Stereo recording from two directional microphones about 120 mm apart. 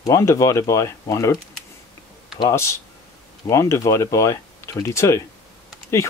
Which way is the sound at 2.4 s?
25° left (ahead or behind).